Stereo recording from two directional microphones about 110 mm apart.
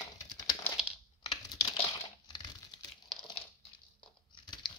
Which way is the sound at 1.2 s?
40° left (ahead or behind).